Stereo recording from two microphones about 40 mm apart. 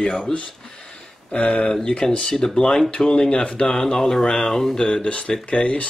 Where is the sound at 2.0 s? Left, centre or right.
Centre.